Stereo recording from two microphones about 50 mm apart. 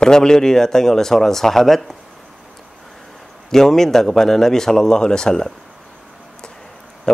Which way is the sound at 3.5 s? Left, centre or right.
Centre.